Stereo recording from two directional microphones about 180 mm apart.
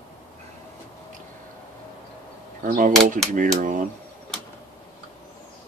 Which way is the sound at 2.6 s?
45° right (ahead or behind).